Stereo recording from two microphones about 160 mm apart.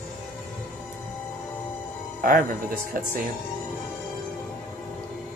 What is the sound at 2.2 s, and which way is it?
Speech, 60° right (ahead or behind).